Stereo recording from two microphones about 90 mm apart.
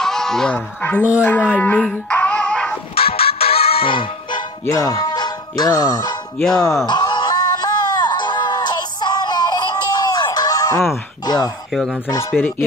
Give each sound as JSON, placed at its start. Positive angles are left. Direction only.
{"t": 0.0, "sound": "music", "side_deg": 5}
{"t": 1.2, "sound": "a sound", "side_deg": 20}
{"t": 1.9, "sound": "music", "side_deg": 15}
{"t": 3.0, "sound": "music", "side_deg": 90}
{"t": 4.6, "sound": "speech", "side_deg": 35}
{"t": 6.3, "sound": "a sound", "side_deg": 10}
{"t": 6.9, "sound": "music", "side_deg": 55}
{"t": 11.2, "sound": "speech", "side_deg": 50}
{"t": 12.4, "sound": "chopping", "side_deg": 20}